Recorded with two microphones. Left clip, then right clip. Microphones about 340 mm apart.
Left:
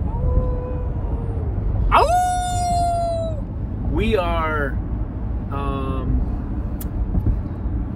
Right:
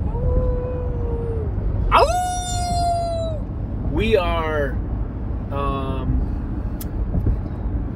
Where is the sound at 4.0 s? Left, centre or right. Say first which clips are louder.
Right 1 dB; centre.